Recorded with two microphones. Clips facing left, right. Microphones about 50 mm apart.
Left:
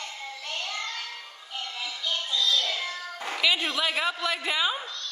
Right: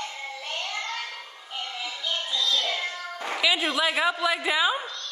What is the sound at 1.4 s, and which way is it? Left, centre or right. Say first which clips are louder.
Music: right 1 dB; centre.